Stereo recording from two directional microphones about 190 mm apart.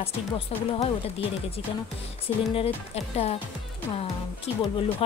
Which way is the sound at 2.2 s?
30° left (ahead or behind).